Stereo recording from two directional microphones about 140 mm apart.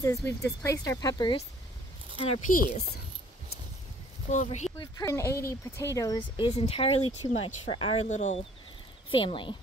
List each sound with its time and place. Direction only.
0.0 s speech: 20° left (ahead or behind)
2.2 s speech: 70° left (ahead or behind)
4.3 s speech: 60° left (ahead or behind)
4.7 s speech: 25° left (ahead or behind)
6.4 s speech: 45° left (ahead or behind)
8.1 s speech: 60° left (ahead or behind)
9.1 s speech: 35° left (ahead or behind)